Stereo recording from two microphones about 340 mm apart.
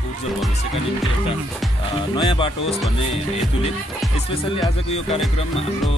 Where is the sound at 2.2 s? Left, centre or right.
Centre.